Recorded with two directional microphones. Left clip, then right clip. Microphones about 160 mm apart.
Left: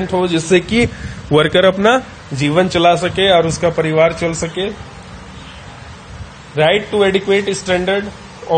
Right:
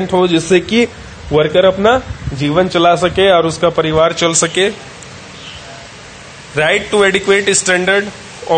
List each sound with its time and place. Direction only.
0.0 s a man's voice: 15° right (ahead or behind)
1.3 s a man's voice: 15° left (ahead or behind)
1.8 s a man's voice: 5° left (ahead or behind)
6.5 s a man's voice: 10° right (ahead or behind)